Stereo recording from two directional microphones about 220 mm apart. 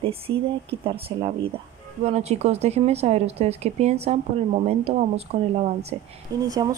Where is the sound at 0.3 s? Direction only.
55° right (ahead or behind).